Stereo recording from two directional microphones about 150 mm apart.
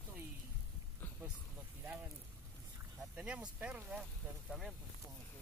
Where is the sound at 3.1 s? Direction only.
5° right (ahead or behind).